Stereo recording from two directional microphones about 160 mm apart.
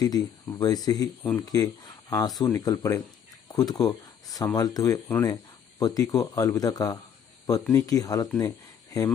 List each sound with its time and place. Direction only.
0.0 s speech: 25° left (ahead or behind)